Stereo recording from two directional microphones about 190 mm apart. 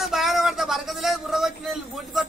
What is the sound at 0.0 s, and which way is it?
A man's voice, centre (ahead or behind).